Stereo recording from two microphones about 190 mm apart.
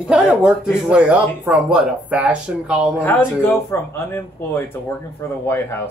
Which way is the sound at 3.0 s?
10° left (ahead or behind).